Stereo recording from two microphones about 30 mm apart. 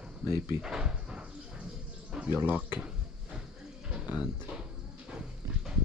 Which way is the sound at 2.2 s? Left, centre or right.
Right.